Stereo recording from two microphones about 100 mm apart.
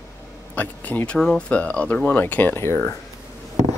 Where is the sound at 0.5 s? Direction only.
15° left (ahead or behind).